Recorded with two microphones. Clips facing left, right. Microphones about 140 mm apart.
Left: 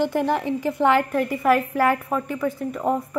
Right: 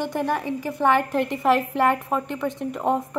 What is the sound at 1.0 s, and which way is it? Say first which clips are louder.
Speech: left 1 dB; 25° right (ahead or behind).